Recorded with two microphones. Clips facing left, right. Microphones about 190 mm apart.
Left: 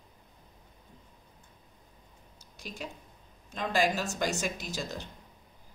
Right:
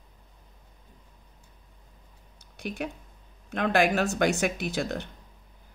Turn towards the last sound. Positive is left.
turn(degrees=-60)  # may be behind; listen again after turning